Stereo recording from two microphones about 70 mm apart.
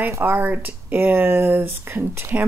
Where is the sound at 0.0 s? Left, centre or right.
Right.